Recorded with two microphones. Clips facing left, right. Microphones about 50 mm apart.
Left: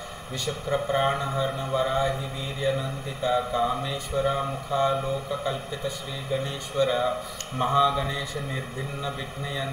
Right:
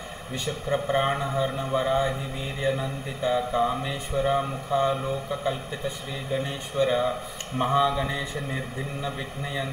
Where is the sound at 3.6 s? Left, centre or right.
Centre.